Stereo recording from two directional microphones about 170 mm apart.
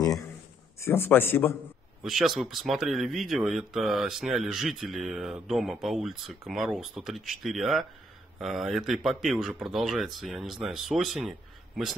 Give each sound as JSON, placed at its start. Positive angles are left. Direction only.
{"t": 0.0, "sound": "a sound", "side_deg": 20}
{"t": 0.7, "sound": "speech", "side_deg": 15}
{"t": 2.0, "sound": "speech", "side_deg": 0}